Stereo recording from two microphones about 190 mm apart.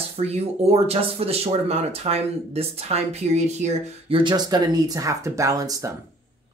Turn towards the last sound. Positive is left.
turn(degrees=-20)  # may be behind; listen again after turning